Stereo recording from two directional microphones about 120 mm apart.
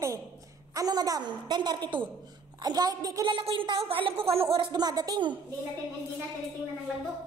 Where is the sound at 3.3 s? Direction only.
50° right (ahead or behind).